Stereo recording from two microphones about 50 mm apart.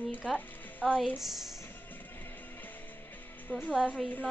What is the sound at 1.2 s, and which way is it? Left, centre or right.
Speech, centre.